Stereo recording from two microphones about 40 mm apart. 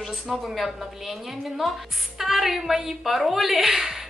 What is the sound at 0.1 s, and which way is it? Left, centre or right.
A woman's voice, centre.